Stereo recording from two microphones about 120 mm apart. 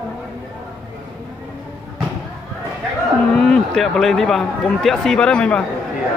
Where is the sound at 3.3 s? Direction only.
5° left (ahead or behind).